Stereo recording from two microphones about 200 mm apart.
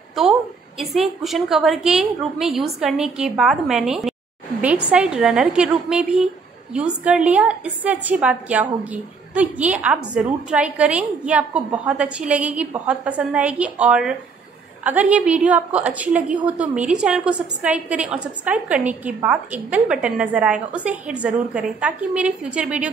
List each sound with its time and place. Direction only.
0.7 s a woman's voice: centre (ahead or behind)